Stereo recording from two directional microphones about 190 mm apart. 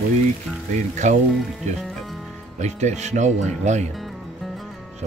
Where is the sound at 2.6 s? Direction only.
40° right (ahead or behind).